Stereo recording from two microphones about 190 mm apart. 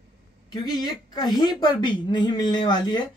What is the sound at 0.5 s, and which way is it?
A woman's voice, 20° left (ahead or behind).